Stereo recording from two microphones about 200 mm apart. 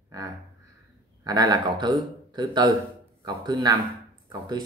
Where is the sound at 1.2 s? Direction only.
20° right (ahead or behind).